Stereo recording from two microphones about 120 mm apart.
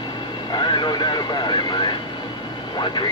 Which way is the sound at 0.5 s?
40° left (ahead or behind).